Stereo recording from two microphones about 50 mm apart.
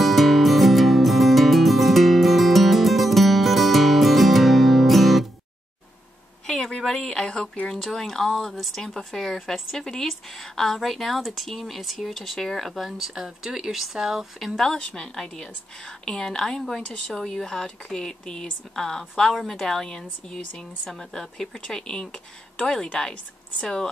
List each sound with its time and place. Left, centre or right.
0.0 s music: centre
6.4 s a sound: centre
7.7 s a woman's voice: centre
14.6 s speech: centre